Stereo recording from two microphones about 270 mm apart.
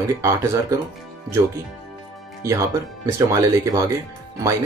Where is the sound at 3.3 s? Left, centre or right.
Centre.